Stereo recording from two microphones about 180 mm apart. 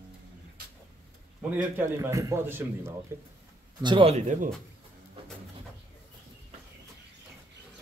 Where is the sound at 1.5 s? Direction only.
10° right (ahead or behind).